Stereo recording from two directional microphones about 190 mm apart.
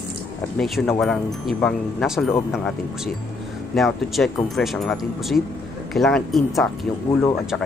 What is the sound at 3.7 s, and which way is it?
Speech, centre (ahead or behind).